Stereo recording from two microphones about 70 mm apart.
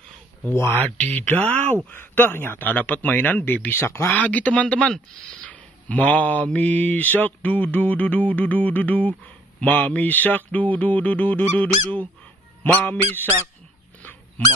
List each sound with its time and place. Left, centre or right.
0.5 s speech: left
0.9 s mantra: left
3.8 s speech: left
4.1 s mantra: left